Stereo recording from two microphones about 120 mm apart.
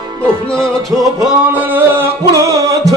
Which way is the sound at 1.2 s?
15° right (ahead or behind).